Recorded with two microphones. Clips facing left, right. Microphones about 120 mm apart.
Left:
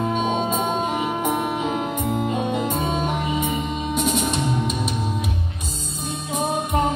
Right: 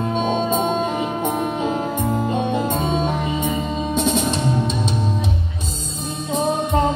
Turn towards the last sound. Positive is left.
turn(degrees=-30)  # may be behind; listen again after turning